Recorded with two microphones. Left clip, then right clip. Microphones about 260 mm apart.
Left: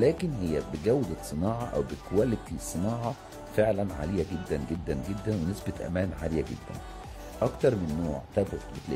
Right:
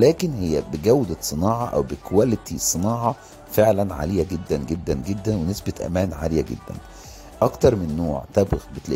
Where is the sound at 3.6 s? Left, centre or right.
Right.